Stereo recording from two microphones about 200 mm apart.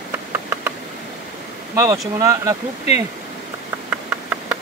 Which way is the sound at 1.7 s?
15° right (ahead or behind).